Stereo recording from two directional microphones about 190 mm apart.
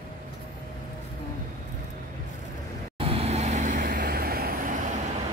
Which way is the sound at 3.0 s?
30° right (ahead or behind).